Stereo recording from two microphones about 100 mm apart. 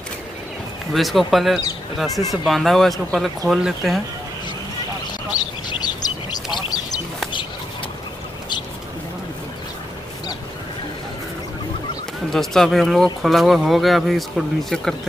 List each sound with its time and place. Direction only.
0.9 s speech: centre (ahead or behind)
6.3 s a sound: 40° left (ahead or behind)
12.3 s speech: 5° left (ahead or behind)